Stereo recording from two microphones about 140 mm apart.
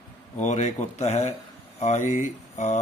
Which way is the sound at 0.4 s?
60° left (ahead or behind).